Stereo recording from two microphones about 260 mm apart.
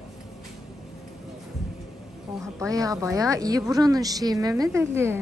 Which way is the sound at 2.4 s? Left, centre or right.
Centre.